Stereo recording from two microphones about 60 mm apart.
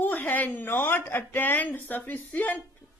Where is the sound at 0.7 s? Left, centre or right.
Left.